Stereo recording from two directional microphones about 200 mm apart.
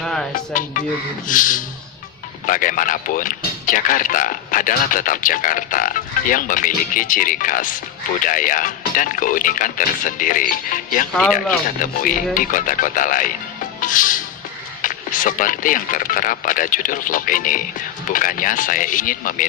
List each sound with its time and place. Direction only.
0.0 s music: 5° left (ahead or behind)
0.5 s music: 40° left (ahead or behind)
2.4 s speech: 40° left (ahead or behind)
13.7 s music: 40° left (ahead or behind)
14.8 s speech: 40° left (ahead or behind)